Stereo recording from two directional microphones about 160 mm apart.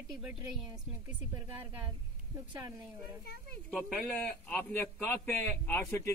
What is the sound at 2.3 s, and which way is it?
Speech, 15° right (ahead or behind).